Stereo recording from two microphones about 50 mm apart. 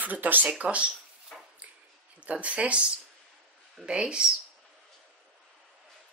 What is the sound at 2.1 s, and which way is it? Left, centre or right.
Speech, right.